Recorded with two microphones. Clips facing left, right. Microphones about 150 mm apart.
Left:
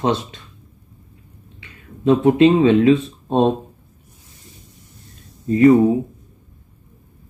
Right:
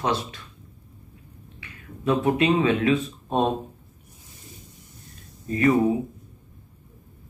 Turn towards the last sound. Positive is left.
turn(degrees=30)  # may be behind; listen again after turning